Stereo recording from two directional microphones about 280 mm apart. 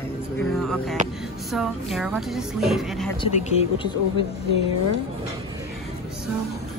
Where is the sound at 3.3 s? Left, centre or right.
Centre.